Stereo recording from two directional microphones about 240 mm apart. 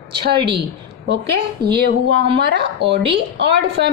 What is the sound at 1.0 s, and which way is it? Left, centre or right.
A woman's voice, right.